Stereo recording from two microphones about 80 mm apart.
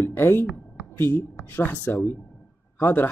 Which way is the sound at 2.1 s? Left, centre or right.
Left.